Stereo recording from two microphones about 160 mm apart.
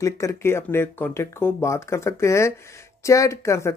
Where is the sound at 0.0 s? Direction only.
20° left (ahead or behind).